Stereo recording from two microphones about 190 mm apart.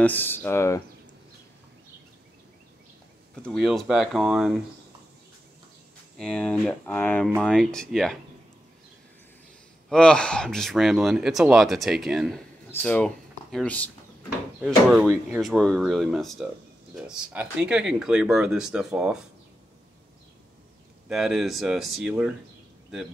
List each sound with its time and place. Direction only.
0.0 s speech: 10° left (ahead or behind)
3.4 s speech: centre (ahead or behind)
6.1 s speech: 5° left (ahead or behind)
9.8 s speech: 5° left (ahead or behind)
21.1 s speech: centre (ahead or behind)